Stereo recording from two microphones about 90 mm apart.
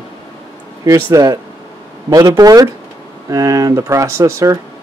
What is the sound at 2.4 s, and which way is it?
Speech, 45° right (ahead or behind).